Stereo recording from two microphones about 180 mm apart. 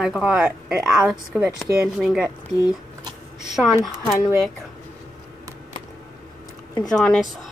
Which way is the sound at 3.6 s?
5° right (ahead or behind).